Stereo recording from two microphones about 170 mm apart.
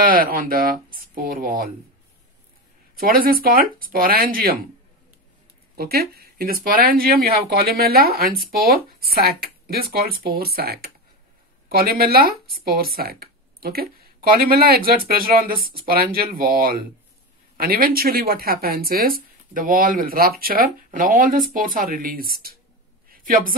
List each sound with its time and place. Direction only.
0.0 s speech: 55° right (ahead or behind)
3.0 s speech: 60° right (ahead or behind)
5.8 s speech: 65° right (ahead or behind)
23.0 s a sound: 55° right (ahead or behind)